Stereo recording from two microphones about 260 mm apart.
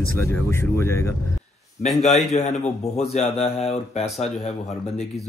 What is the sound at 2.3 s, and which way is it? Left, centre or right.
Speech, left.